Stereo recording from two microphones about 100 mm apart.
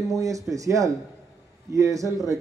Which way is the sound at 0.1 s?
35° right (ahead or behind).